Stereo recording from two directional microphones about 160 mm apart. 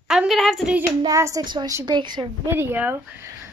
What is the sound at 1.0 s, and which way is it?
A woman's voice, 20° right (ahead or behind).